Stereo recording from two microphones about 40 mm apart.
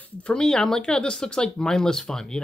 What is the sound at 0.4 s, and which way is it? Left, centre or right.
Speech, centre.